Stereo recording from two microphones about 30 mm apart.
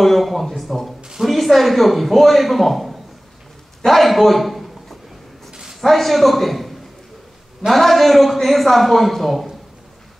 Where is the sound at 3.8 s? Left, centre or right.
Centre.